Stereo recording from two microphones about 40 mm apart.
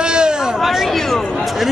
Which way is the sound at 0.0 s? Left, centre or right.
Right.